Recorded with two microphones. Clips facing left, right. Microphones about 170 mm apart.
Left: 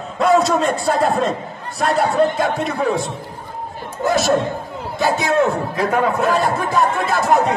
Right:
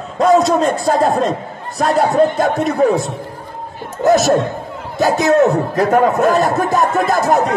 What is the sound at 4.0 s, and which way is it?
Speech, 45° right (ahead or behind).